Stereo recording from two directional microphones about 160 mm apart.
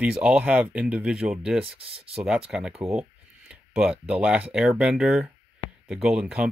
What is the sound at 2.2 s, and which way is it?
Speech, 5° right (ahead or behind).